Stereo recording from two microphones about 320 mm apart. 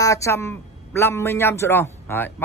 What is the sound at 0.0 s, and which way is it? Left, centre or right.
A man's voice, centre.